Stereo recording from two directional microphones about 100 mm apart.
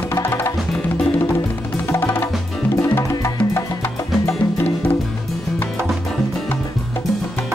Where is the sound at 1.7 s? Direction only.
25° left (ahead or behind).